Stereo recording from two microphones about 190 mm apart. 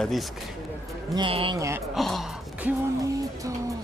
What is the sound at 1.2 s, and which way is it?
Speech, 30° right (ahead or behind).